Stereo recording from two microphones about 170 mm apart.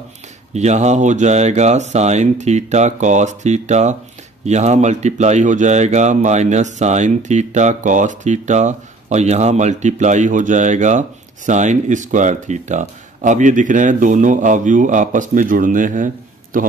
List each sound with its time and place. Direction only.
0.5 s speech: 40° right (ahead or behind)